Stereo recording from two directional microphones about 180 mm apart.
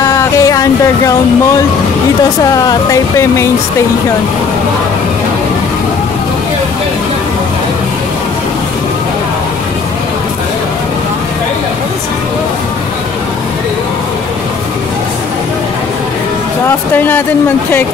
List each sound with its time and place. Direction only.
0.0 s music: 20° left (ahead or behind)
2.5 s speech: 20° left (ahead or behind)
16.6 s speech: 10° left (ahead or behind)